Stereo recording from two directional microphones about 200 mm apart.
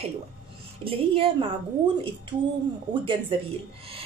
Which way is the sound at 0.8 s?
25° right (ahead or behind).